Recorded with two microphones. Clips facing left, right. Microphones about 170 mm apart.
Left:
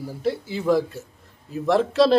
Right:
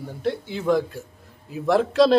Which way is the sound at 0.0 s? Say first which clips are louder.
Left 1 dB; 5° left (ahead or behind).